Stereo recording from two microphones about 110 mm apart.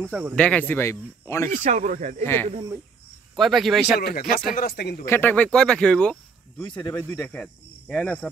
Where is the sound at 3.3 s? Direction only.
Centre (ahead or behind).